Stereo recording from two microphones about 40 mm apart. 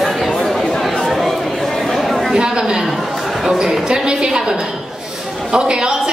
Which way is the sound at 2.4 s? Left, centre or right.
Centre.